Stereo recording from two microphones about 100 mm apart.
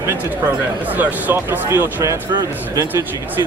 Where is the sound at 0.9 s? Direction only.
20° right (ahead or behind).